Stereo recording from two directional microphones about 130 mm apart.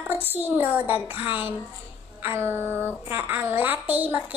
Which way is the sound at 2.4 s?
20° right (ahead or behind).